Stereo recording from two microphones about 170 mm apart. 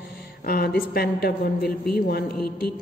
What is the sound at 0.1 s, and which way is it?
A man's voice, 65° left (ahead or behind).